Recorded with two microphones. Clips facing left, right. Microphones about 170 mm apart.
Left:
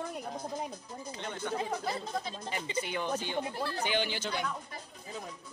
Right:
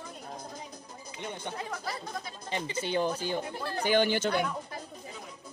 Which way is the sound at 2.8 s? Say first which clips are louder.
Right 8 dB; 35° right (ahead or behind).